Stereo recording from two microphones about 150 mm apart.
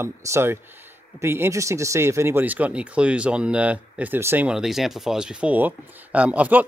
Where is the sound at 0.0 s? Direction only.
15° right (ahead or behind).